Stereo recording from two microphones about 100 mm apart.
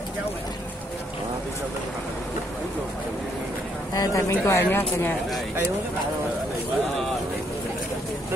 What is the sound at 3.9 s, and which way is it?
Speech, 30° left (ahead or behind).